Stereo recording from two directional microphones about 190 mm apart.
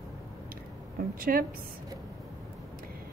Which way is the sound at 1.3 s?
50° right (ahead or behind).